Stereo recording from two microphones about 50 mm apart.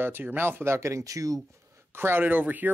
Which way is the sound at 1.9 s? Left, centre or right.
Right.